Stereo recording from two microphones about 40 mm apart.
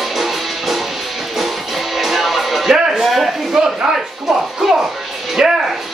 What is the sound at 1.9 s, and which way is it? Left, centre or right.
Music, centre.